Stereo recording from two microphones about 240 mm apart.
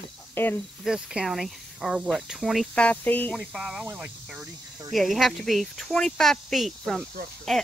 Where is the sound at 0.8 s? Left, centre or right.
Centre.